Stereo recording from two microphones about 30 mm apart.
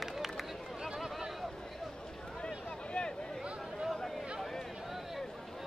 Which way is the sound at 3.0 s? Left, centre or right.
Left.